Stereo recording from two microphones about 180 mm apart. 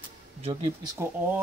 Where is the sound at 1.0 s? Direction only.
15° right (ahead or behind).